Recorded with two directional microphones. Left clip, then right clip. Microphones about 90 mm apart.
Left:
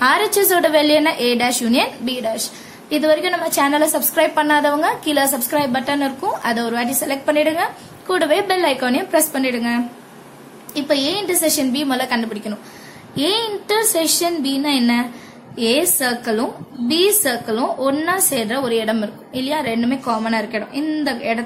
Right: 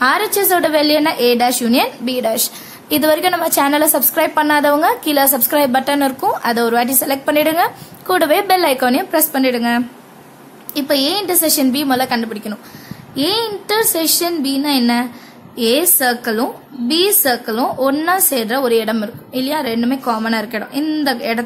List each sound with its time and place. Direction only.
0.0 s a woman's voice: 25° right (ahead or behind)
2.9 s a woman's voice: 75° right (ahead or behind); by 4.0 s 55° right (ahead or behind)
4.0 s a woman's voice: 40° right (ahead or behind)
5.5 s a woman's voice: 60° right (ahead or behind)
6.3 s a woman's voice: 45° right (ahead or behind)
9.1 s a woman's voice: 35° right (ahead or behind)